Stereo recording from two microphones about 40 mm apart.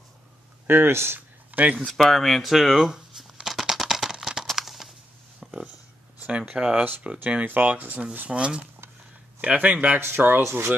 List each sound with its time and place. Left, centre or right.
0.7 s speech: right
1.5 s speech: right
2.0 s speech: centre
2.9 s a sound: centre
6.5 s speech: centre
7.0 s speech: right
7.4 s speech: right
8.3 s speech: right
9.9 s speech: right